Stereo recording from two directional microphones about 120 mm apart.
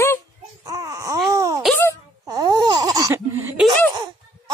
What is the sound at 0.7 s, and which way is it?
Baby cry, 30° right (ahead or behind).